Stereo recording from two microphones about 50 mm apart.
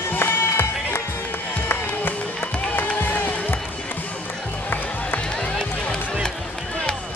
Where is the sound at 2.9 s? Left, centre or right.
Left.